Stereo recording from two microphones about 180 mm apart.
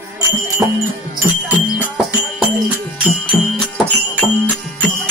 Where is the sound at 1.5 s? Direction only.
10° right (ahead or behind).